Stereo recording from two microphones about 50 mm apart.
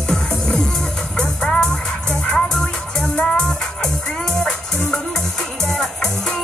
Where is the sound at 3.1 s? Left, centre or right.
Centre.